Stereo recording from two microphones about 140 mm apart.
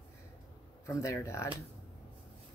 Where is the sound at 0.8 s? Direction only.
20° left (ahead or behind).